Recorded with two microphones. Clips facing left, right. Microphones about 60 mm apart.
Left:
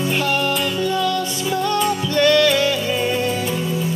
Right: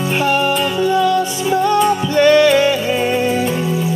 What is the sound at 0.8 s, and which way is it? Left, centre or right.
Music, centre.